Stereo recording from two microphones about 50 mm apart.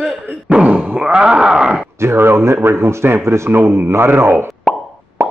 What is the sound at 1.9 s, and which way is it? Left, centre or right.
A man's voice, right.